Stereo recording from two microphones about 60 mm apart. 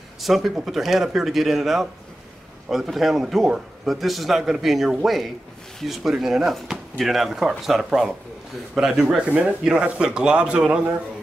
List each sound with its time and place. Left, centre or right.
0.2 s a man's voice: centre